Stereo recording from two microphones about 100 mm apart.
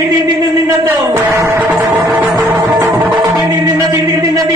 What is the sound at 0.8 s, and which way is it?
Music, 35° right (ahead or behind).